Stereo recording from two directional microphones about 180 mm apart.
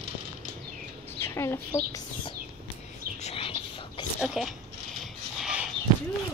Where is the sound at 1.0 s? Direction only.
10° left (ahead or behind).